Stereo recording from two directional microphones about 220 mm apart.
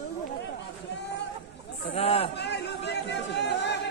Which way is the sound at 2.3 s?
50° left (ahead or behind).